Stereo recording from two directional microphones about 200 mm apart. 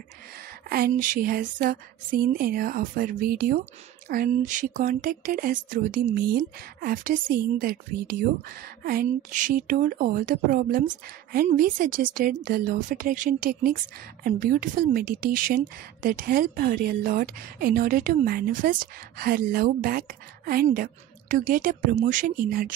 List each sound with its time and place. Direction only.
0.4 s speech: 50° right (ahead or behind)